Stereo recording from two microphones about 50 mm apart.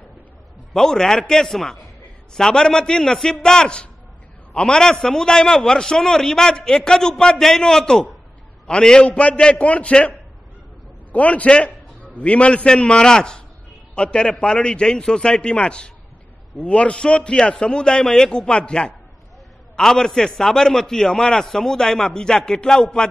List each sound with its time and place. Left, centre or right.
0.7 s a man's voice: centre
19.8 s a man's voice: centre